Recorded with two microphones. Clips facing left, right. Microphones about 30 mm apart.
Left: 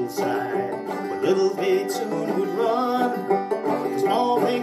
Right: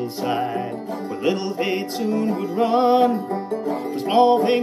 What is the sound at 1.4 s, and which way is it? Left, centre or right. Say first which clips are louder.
Music: left 3 dB; right.